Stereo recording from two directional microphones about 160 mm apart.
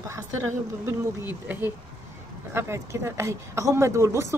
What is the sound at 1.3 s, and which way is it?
Speech, 15° right (ahead or behind).